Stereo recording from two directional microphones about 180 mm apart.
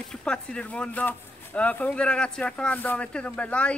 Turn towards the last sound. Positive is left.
turn(degrees=5)  # may be behind; listen again after turning